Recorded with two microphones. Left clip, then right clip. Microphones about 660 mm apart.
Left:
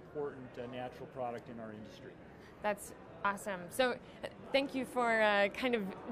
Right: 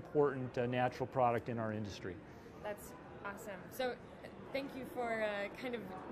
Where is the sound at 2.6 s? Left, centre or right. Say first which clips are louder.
Left 8 dB; left.